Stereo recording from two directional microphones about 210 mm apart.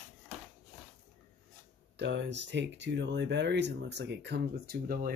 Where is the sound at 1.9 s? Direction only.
55° right (ahead or behind).